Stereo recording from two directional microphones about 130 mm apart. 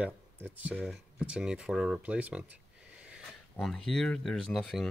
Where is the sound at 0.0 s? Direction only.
10° right (ahead or behind).